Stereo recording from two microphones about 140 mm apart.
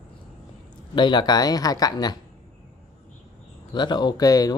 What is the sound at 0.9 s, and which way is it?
Speech, 35° left (ahead or behind).